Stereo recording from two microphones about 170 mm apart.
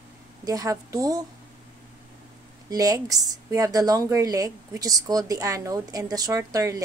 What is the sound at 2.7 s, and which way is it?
Speech, 20° right (ahead or behind).